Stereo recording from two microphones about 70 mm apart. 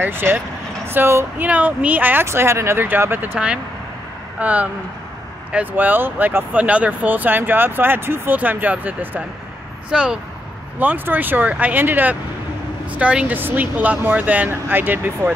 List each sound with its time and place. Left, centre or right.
0.0 s speech: right
1.4 s speech: right
2.2 s speech: right
4.4 s speech: right
9.8 s speech: centre
10.8 s speech: right